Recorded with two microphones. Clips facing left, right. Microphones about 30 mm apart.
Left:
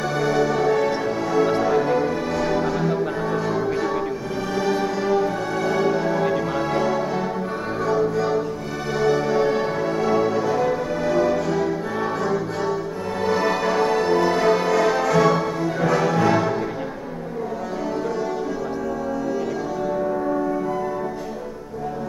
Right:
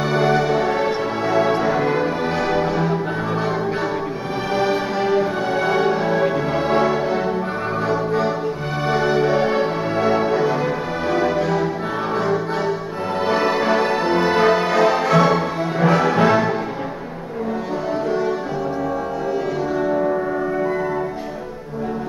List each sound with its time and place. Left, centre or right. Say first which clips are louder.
0.0 s music: right 3 dB; right
4.6 s music: right 2 dB; right
13.3 s music: right 3 dB; right